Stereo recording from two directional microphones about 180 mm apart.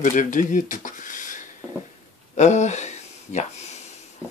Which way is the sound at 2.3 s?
40° left (ahead or behind).